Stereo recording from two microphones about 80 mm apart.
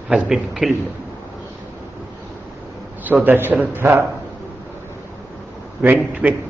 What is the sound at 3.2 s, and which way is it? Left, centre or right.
Speech, right.